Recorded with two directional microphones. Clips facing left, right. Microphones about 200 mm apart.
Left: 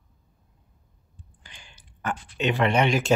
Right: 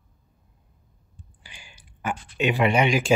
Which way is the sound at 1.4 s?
10° right (ahead or behind).